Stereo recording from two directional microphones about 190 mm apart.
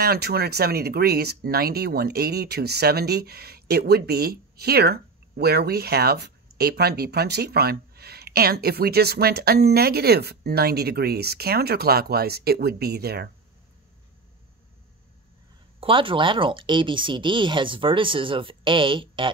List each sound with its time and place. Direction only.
0.0 s speech: 55° right (ahead or behind)
15.8 s speech: 25° right (ahead or behind)